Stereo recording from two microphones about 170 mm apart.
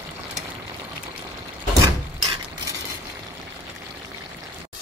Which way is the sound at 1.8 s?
25° right (ahead or behind).